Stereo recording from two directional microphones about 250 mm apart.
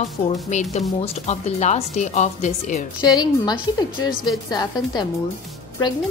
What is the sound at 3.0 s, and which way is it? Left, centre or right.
A woman's voice, centre.